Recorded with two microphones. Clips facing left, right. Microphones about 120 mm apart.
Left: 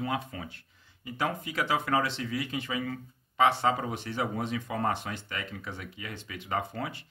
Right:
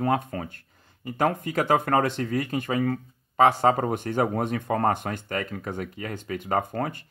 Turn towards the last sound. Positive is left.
turn(degrees=-45)  # may be behind; listen again after turning